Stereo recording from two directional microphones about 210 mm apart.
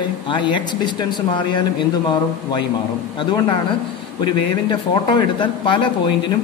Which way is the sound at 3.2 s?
20° left (ahead or behind).